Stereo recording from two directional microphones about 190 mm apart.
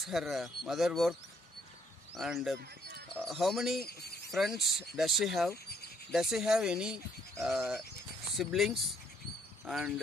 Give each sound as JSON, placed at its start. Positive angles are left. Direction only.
{"t": 0.0, "sound": "speech", "side_deg": 0}
{"t": 2.1, "sound": "speech", "side_deg": 0}
{"t": 3.8, "sound": "a sound", "side_deg": 55}
{"t": 4.3, "sound": "speech", "side_deg": 0}